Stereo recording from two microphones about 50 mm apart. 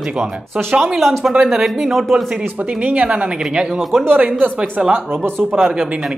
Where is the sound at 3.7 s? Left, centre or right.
Centre.